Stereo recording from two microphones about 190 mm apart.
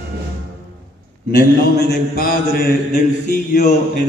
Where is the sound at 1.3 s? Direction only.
55° left (ahead or behind).